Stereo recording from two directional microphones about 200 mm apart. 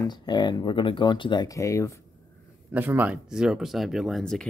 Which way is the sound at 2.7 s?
10° right (ahead or behind).